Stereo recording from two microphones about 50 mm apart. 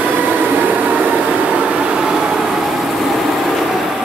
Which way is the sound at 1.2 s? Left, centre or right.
Right.